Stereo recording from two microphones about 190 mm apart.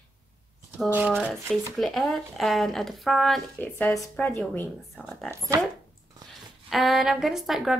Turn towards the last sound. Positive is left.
turn(degrees=0)  # may be behind; listen again after turning